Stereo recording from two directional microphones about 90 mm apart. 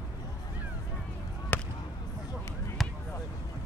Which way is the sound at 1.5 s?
20° left (ahead or behind).